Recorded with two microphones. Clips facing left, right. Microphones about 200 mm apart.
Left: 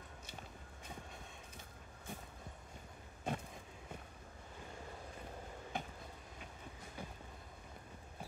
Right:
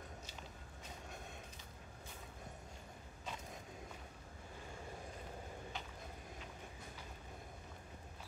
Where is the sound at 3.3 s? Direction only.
55° left (ahead or behind).